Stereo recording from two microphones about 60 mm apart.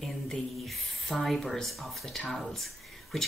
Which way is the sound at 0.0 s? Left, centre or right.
Centre.